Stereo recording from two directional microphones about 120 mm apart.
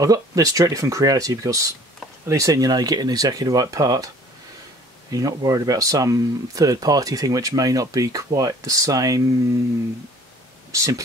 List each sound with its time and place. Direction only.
0.0 s speech: 30° right (ahead or behind)
5.1 s speech: 30° right (ahead or behind)
10.7 s speech: 25° right (ahead or behind)